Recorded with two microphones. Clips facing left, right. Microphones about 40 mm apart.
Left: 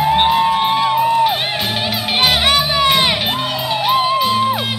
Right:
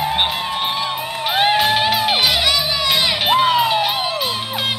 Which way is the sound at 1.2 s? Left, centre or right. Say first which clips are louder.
Right 1 dB; centre.